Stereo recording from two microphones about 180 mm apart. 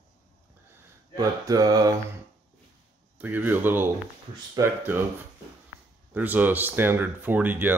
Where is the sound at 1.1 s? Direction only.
20° right (ahead or behind).